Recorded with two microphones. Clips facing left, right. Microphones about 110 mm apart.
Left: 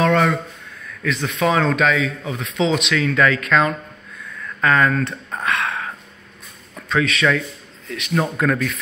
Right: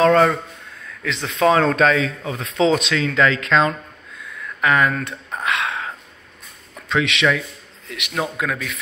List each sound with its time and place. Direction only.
0.0 s a sound: 30° right (ahead or behind)
1.0 s speech: 25° right (ahead or behind)
6.9 s speech: 20° right (ahead or behind)
8.2 s speech: 5° right (ahead or behind)